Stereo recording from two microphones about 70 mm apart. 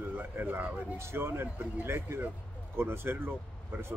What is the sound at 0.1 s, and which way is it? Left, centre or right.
Speech, right.